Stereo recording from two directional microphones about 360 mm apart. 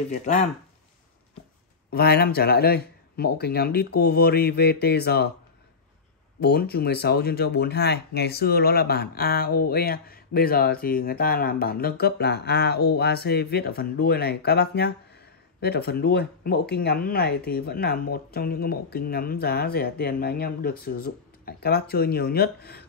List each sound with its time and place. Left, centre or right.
0.1 s speech: left
1.9 s speech: left
6.4 s speech: left